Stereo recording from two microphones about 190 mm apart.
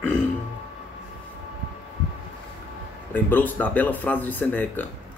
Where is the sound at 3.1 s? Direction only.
10° left (ahead or behind).